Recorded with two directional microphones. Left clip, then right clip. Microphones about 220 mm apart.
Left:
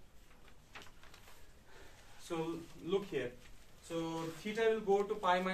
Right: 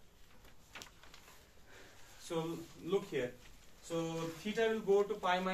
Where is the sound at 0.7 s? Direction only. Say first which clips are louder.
Right 2 dB; 20° left (ahead or behind).